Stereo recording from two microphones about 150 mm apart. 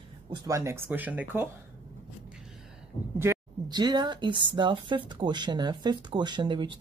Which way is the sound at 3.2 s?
20° right (ahead or behind).